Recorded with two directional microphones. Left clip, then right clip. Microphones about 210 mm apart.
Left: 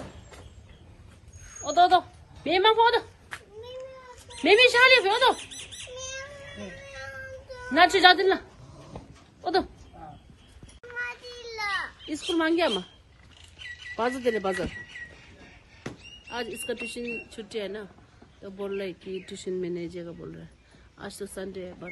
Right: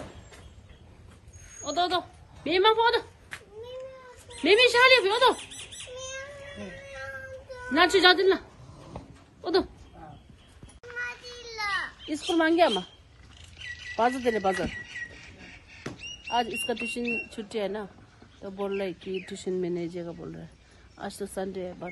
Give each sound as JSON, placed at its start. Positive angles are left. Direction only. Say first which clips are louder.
{"t": 1.6, "sound": "a woman's voice", "louder": "left 7 dB", "side_deg": 0}
{"t": 4.4, "sound": "speech", "louder": "left 2 dB", "side_deg": -5}
{"t": 7.5, "sound": "a sound", "louder": "left 2 dB", "side_deg": 0}
{"t": 7.9, "sound": "speech", "louder": "left 1 dB", "side_deg": -10}
{"t": 9.4, "sound": "a sound", "louder": "even", "side_deg": -5}
{"t": 11.1, "sound": "children playing", "louder": "left 1 dB", "side_deg": 40}
{"t": 12.1, "sound": "speech", "louder": "right 1 dB", "side_deg": 15}
{"t": 13.9, "sound": "speech", "louder": "right 1 dB", "side_deg": 15}
{"t": 16.6, "sound": "speech", "louder": "right 2 dB", "side_deg": 5}